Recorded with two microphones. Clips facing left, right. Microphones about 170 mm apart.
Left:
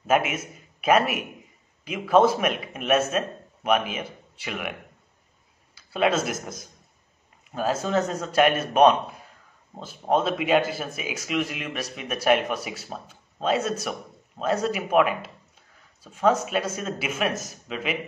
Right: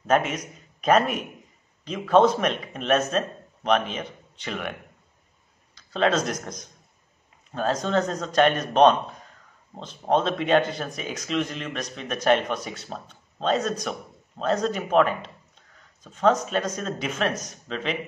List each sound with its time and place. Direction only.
0.0 s a man's voice: 5° left (ahead or behind)
5.8 s a man's voice: 10° left (ahead or behind)